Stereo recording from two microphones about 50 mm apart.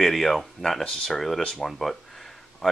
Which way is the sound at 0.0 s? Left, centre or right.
Centre.